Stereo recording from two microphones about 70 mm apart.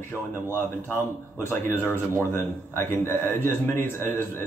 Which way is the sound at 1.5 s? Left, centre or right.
Left.